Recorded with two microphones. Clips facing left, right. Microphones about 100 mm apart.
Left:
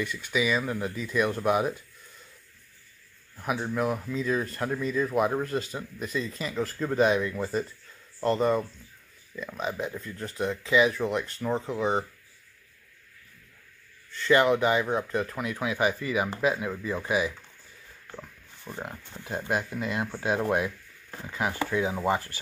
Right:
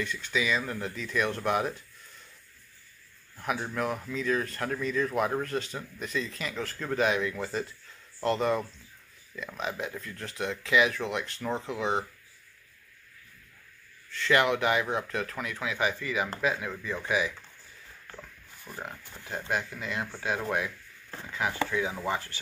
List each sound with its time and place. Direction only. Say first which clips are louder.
0.0 s speech: left 3 dB; 10° left (ahead or behind)
3.3 s speech: left 3 dB; 5° left (ahead or behind)
14.4 s speech: left 3 dB; centre (ahead or behind)
15.5 s speech: left 4 dB; 15° left (ahead or behind)
16.0 s speech: left 3 dB; 30° left (ahead or behind)
16.3 s speech: left 3 dB; 15° left (ahead or behind)
18.1 s pig: left 4 dB; 20° left (ahead or behind)
19.1 s speech: left 3 dB; 15° left (ahead or behind)
21.1 s a sound: left 1 dB; 10° left (ahead or behind)
21.4 s speech: left 1 dB; 20° left (ahead or behind)
21.9 s speech: left 5 dB; 35° left (ahead or behind)